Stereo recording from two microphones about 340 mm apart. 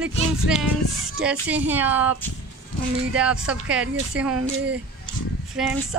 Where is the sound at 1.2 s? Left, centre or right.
Centre.